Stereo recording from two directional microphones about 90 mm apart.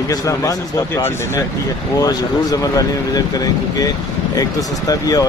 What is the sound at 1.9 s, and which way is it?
Speech, 45° left (ahead or behind).